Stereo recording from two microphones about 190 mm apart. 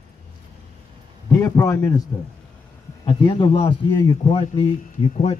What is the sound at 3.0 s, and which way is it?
Speech, 25° left (ahead or behind).